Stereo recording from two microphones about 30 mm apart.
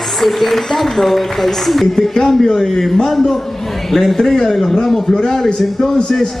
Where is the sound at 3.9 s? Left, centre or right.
Centre.